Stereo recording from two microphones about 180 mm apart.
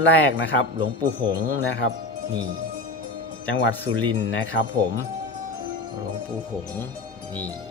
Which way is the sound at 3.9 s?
35° right (ahead or behind).